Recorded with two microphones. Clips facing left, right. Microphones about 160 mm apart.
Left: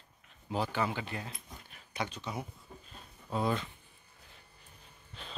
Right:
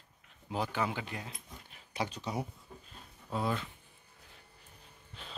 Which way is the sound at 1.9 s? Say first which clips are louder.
Right 2 dB; 35° right (ahead or behind).